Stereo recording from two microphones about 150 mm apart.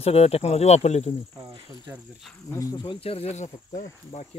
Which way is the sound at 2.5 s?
25° left (ahead or behind).